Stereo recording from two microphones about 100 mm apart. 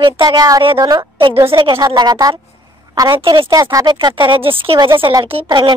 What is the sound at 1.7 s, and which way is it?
Speech, 40° right (ahead or behind).